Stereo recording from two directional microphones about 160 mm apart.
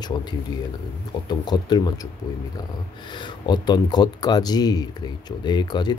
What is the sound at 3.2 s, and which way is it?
Speech, 25° left (ahead or behind).